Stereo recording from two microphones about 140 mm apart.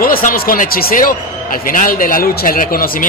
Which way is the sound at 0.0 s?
90° left.